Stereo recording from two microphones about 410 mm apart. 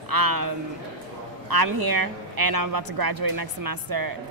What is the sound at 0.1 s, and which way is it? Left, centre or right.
Speech, right.